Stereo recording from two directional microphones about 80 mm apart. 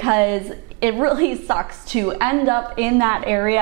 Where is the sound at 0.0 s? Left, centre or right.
Right.